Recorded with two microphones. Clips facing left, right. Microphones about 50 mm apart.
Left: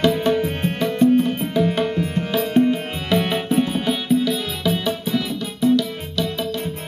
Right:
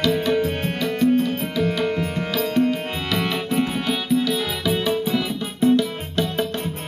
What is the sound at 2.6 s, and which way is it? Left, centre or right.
Music, left.